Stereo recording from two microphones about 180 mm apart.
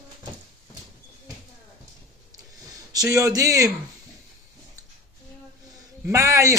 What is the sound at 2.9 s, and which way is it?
Speech, 20° right (ahead or behind).